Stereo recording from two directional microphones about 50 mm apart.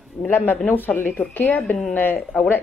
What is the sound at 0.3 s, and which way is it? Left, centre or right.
Speech, left.